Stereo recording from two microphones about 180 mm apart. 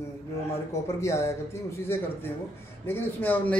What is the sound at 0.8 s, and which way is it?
Speech, 15° left (ahead or behind).